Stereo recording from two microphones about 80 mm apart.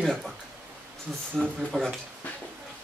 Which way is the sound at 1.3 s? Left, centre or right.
Centre.